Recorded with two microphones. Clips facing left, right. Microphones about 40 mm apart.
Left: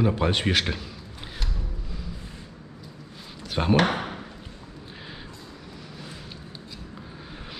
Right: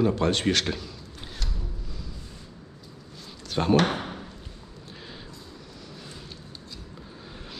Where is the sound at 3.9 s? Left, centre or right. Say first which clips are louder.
Left 2 dB; left.